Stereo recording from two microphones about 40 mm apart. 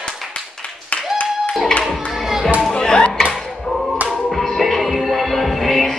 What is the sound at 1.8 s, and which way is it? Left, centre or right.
Children playing, centre.